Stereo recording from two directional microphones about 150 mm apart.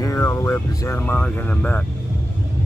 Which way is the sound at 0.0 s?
20° left (ahead or behind).